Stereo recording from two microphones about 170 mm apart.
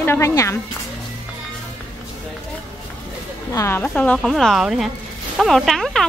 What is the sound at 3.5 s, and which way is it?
A woman's voice, 15° left (ahead or behind).